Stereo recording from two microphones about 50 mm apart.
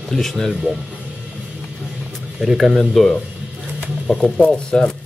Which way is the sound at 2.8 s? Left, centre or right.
Centre.